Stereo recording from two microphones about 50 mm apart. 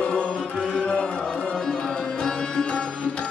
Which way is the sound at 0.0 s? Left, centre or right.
Left.